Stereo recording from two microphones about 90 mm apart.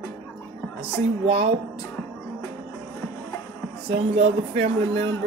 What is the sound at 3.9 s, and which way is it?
Speech, 90° right.